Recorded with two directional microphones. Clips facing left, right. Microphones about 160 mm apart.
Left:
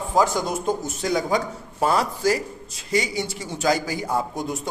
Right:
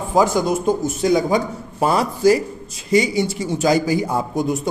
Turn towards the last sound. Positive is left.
turn(degrees=-15)  # may be behind; listen again after turning